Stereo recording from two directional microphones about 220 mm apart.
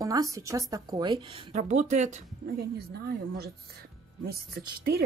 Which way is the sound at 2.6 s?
45° right (ahead or behind).